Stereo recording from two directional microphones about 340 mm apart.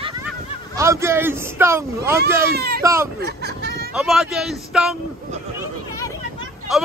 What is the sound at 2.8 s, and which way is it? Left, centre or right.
Speech, centre.